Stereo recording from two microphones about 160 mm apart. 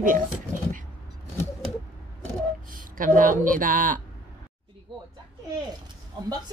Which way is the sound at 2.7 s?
60° right (ahead or behind).